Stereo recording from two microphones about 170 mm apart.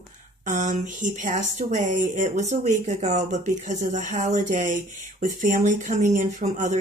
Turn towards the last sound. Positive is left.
turn(degrees=-45)  # may be behind; listen again after turning